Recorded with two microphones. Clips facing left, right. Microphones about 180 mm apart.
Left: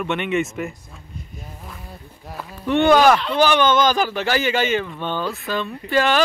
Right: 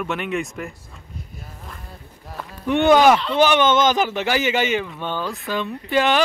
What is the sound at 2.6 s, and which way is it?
Speech, 15° right (ahead or behind).